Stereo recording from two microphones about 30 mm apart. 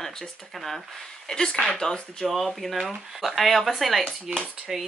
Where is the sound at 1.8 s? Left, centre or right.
Centre.